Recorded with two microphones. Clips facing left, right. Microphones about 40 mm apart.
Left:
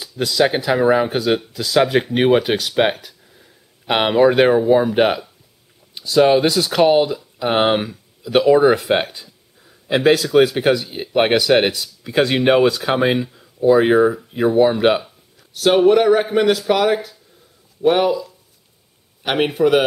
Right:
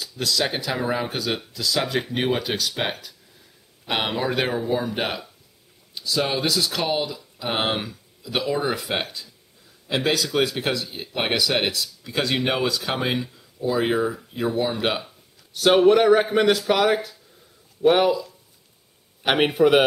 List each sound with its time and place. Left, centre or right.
0.0 s speech: centre
15.5 s a man's voice: centre